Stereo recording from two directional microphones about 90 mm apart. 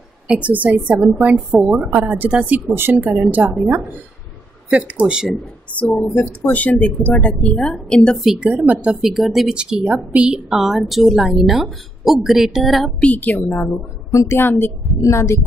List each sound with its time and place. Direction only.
0.3 s a woman's voice: 15° right (ahead or behind)
4.6 s a woman's voice: 15° right (ahead or behind)
5.9 s a woman's voice: 15° left (ahead or behind)
8.2 s a woman's voice: 5° right (ahead or behind)
8.5 s a woman's voice: 15° right (ahead or behind)
9.1 s a woman's voice: centre (ahead or behind)
13.0 s a woman's voice: 15° left (ahead or behind)
14.1 s a woman's voice: 30° left (ahead or behind)